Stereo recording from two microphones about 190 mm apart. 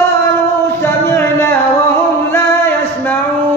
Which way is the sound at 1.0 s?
10° left (ahead or behind).